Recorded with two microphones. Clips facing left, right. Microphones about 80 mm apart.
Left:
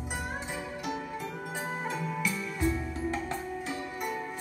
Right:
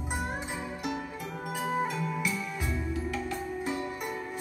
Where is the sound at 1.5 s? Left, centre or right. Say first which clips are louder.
Right 6 dB; left.